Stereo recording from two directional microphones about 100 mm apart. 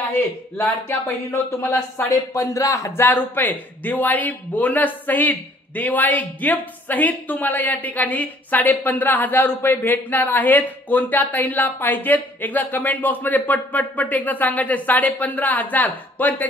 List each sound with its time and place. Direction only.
0.1 s speech: 25° left (ahead or behind)